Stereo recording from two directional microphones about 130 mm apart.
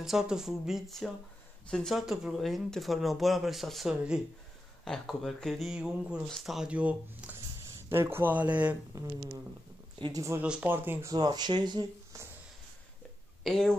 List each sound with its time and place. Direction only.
0.0 s speech: 5° right (ahead or behind)
8.9 s speech: 20° right (ahead or behind)
9.9 s speech: 40° right (ahead or behind)
10.4 s speech: 10° right (ahead or behind)
11.1 s speech: 35° right (ahead or behind)
13.4 s speech: 5° left (ahead or behind)